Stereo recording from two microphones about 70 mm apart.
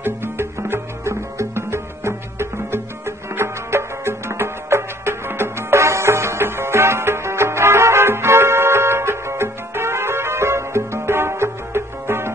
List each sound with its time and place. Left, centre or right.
0.0 s music: right